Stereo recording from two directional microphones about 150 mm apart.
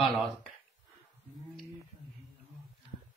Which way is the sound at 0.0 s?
10° right (ahead or behind).